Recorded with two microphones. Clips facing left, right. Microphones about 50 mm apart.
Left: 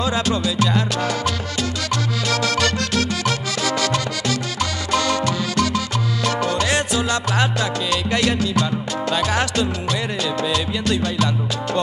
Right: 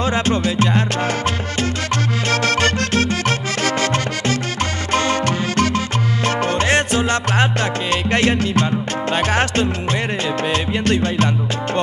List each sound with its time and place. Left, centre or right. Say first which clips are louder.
0.0 s music: right 2 dB; right
2.3 s music: right 3 dB; right